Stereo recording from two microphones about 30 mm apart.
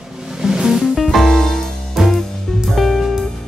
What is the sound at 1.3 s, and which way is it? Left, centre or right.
Music, centre.